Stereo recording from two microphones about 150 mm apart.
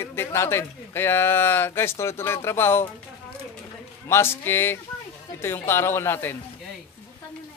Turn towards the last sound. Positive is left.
turn(degrees=15)  # may be behind; listen again after turning